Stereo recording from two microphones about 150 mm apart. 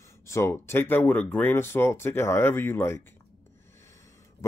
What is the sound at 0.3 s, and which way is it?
Speech, 20° left (ahead or behind).